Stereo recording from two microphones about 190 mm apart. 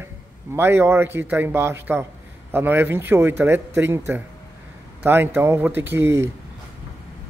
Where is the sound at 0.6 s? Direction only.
10° right (ahead or behind).